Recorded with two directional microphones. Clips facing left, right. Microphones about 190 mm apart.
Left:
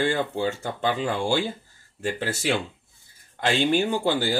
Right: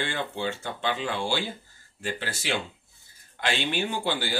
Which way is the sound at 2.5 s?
45° left (ahead or behind).